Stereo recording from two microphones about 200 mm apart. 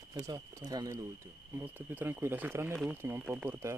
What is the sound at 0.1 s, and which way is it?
Speech, 20° right (ahead or behind).